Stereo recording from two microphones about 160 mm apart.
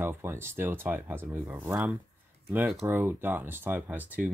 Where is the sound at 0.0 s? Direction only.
15° right (ahead or behind).